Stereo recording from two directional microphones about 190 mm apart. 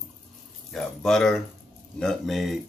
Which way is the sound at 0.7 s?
Centre (ahead or behind).